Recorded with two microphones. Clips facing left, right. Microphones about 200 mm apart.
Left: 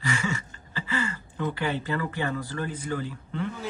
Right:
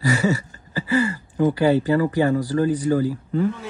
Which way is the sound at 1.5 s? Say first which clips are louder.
Right 11 dB; 40° right (ahead or behind).